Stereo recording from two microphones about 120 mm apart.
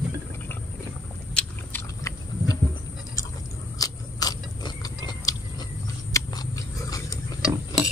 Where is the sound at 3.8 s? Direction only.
30° left (ahead or behind).